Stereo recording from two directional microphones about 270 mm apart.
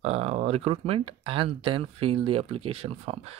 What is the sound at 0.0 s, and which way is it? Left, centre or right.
Speech, right.